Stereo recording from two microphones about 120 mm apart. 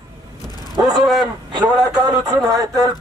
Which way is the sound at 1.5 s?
35° right (ahead or behind).